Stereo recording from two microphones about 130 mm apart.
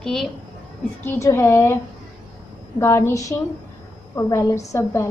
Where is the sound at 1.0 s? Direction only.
20° left (ahead or behind).